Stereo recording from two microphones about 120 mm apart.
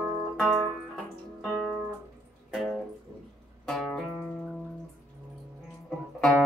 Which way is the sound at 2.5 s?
Centre (ahead or behind).